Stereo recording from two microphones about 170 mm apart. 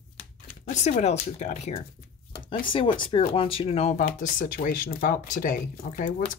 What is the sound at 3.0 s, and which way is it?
Speech, 30° left (ahead or behind).